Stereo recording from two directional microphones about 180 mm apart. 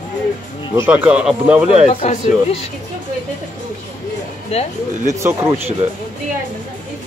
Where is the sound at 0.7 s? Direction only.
10° right (ahead or behind).